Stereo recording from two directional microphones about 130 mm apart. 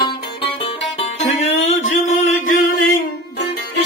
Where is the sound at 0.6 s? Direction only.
45° left (ahead or behind).